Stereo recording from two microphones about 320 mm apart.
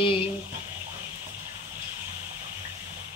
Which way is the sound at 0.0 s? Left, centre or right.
Centre.